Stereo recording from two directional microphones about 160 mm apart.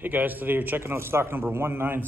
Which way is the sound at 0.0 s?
10° right (ahead or behind).